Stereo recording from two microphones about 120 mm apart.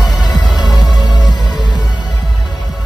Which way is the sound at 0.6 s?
35° left (ahead or behind).